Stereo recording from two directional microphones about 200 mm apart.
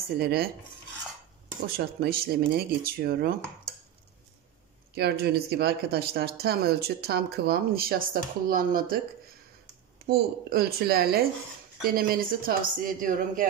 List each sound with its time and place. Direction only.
0.1 s speech: 50° right (ahead or behind)
1.8 s speech: 50° right (ahead or behind)
4.9 s speech: 50° right (ahead or behind)
10.0 s speech: 50° right (ahead or behind)